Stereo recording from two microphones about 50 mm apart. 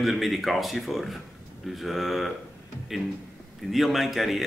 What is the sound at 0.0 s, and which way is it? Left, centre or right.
Speech, centre.